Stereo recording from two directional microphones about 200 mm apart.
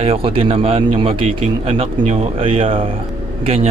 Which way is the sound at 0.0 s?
30° right (ahead or behind).